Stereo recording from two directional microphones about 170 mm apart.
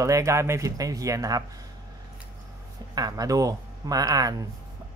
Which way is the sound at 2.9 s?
20° right (ahead or behind).